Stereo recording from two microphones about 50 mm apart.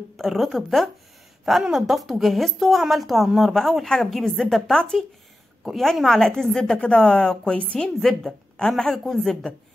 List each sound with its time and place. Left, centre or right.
0.2 s a woman's voice: centre
7.5 s a woman's voice: left
8.0 s a woman's voice: centre